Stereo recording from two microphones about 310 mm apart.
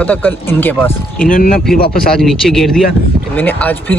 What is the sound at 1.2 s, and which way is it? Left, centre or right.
Speech, left.